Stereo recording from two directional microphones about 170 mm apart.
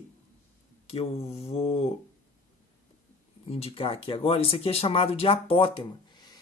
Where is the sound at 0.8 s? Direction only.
35° left (ahead or behind).